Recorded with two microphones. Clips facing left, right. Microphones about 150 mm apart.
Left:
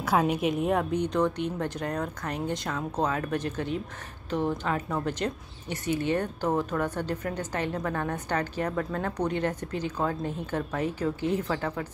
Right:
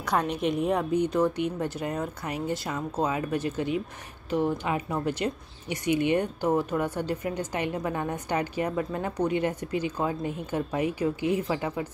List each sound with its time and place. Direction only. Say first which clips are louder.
0.0 s a woman's voice: left 2 dB; 5° left (ahead or behind)
1.1 s speech: right 1 dB; 10° right (ahead or behind)